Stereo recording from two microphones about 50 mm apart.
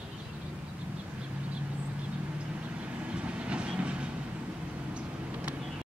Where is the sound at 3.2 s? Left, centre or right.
Right.